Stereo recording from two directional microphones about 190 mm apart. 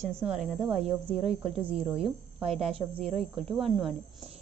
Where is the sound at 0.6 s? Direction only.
25° right (ahead or behind).